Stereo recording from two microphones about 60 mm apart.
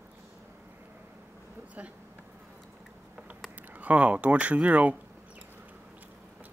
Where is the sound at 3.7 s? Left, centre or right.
Right.